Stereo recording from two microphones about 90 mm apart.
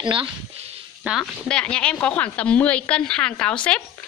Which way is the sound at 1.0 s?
15° right (ahead or behind).